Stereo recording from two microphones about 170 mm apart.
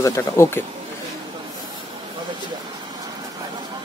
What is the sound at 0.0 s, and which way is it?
Speech, 15° left (ahead or behind).